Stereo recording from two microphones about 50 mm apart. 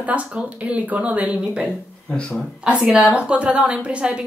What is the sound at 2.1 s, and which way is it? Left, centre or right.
Speech, left.